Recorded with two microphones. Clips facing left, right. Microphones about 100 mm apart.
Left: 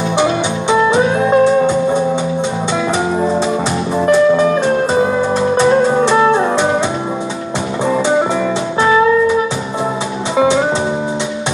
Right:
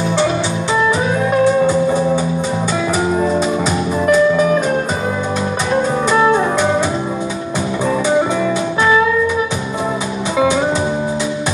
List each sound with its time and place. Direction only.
0.2 s music: 25° left (ahead or behind)
3.2 s music: 30° left (ahead or behind)
10.3 s music: 30° left (ahead or behind)